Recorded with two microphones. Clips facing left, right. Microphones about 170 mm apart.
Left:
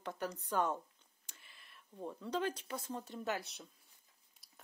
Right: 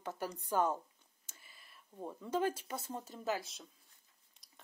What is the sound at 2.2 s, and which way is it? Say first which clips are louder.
Speech: right 3 dB; 5° right (ahead or behind).